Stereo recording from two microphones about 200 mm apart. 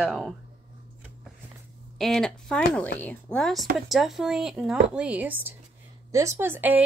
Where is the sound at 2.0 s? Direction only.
Centre (ahead or behind).